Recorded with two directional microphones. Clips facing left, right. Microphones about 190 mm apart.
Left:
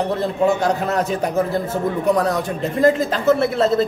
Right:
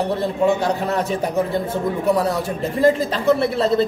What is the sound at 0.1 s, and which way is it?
A man's voice, centre (ahead or behind).